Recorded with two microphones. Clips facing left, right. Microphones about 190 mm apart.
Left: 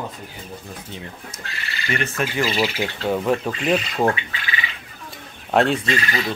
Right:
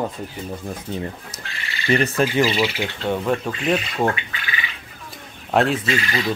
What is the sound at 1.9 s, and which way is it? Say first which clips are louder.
Speech: right 6 dB; 35° right (ahead or behind).